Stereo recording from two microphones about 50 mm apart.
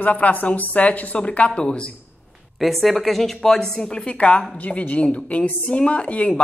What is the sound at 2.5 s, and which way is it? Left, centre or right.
A woman's voice, centre.